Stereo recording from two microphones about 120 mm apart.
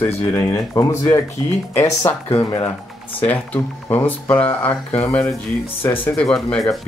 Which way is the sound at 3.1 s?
15° left (ahead or behind).